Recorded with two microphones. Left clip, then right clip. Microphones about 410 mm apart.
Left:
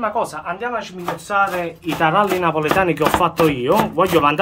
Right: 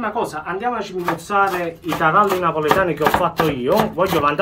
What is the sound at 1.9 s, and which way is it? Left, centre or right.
Speech, left.